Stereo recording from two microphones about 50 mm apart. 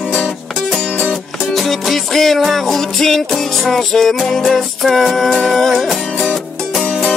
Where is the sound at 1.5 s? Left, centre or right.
Centre.